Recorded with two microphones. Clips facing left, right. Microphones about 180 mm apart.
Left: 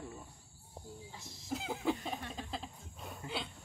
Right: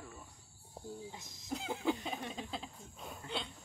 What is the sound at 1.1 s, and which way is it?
Speech, 20° right (ahead or behind).